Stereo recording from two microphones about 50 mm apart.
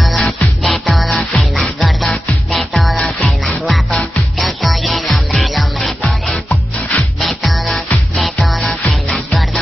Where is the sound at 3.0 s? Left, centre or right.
Left.